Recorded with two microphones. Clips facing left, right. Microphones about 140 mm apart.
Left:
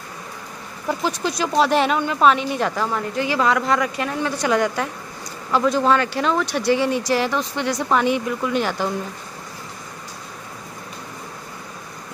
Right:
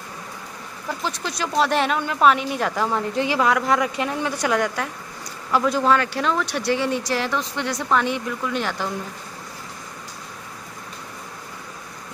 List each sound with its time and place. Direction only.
1.0 s a woman's voice: 5° left (ahead or behind)
2.9 s a woman's voice: 20° right (ahead or behind)
3.3 s speech: 10° right (ahead or behind)
4.4 s a woman's voice: centre (ahead or behind)